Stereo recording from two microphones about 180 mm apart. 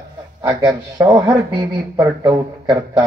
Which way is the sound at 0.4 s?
20° right (ahead or behind).